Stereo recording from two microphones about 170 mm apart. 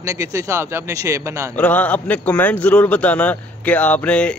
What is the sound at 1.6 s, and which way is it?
Speech, 10° left (ahead or behind).